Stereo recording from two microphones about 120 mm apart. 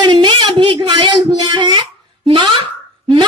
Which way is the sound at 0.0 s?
40° right (ahead or behind).